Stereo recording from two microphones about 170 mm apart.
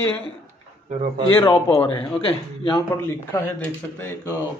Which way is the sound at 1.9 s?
30° left (ahead or behind).